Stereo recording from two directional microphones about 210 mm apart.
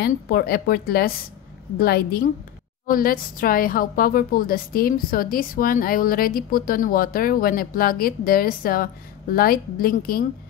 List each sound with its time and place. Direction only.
0.0 s a woman's voice: 50° left (ahead or behind)